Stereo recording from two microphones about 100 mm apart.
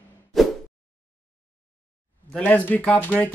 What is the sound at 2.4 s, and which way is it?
Speech, 15° left (ahead or behind).